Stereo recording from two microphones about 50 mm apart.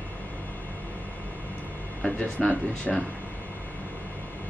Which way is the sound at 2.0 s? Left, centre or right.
Left.